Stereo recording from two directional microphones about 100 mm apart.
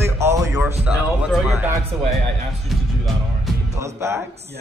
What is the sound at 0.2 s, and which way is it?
Music, 30° right (ahead or behind).